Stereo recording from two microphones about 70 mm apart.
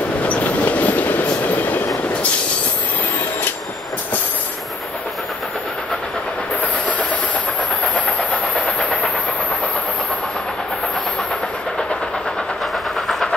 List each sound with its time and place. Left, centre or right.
0.3 s train: left
8.6 s train: centre
13.0 s train: centre